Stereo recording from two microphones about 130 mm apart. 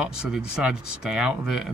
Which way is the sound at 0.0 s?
5° right (ahead or behind).